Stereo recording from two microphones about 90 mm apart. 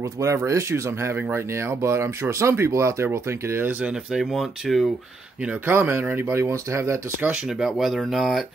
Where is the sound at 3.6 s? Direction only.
15° right (ahead or behind).